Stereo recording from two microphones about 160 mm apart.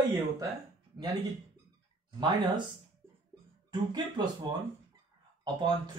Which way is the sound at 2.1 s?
25° right (ahead or behind).